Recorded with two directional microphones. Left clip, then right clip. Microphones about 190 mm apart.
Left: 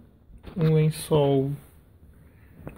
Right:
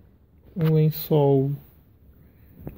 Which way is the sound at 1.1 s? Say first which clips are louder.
Right 2 dB; 35° right (ahead or behind).